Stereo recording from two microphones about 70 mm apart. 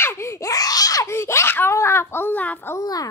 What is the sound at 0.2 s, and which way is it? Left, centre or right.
Laughter, left.